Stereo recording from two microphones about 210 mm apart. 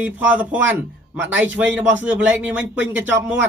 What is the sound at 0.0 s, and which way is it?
Speech, 10° right (ahead or behind).